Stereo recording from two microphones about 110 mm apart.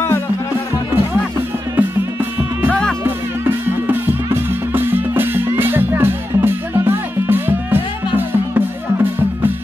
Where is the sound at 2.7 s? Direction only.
10° left (ahead or behind).